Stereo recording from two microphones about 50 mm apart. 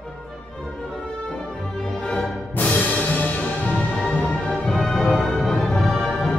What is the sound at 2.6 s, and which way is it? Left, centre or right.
Music, left.